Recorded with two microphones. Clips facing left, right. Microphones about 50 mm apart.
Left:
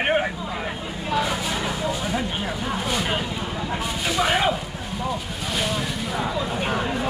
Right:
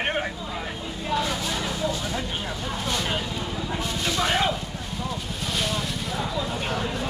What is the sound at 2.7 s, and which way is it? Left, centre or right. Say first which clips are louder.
Vehicle: left 2 dB; centre.